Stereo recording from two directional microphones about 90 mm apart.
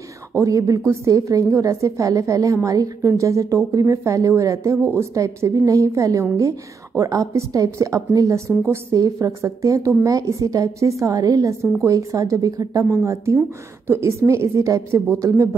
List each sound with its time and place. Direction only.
0.4 s a woman's voice: 40° right (ahead or behind)